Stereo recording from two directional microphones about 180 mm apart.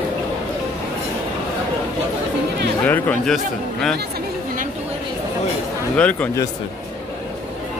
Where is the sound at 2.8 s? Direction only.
10° left (ahead or behind).